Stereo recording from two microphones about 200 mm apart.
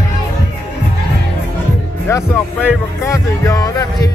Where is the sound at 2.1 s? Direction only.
15° left (ahead or behind).